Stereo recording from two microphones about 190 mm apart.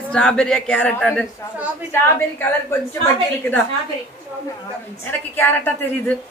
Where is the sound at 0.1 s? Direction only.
5° left (ahead or behind).